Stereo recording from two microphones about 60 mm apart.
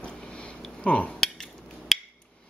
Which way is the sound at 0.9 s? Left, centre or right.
Centre.